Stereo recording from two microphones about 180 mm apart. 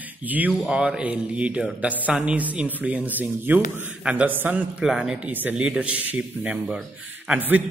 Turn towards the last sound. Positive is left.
turn(degrees=-10)  # may be behind; listen again after turning